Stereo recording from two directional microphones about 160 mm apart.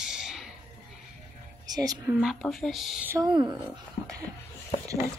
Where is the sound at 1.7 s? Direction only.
25° right (ahead or behind).